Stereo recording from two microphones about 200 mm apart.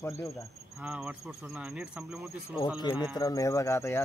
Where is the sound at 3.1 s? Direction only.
15° left (ahead or behind).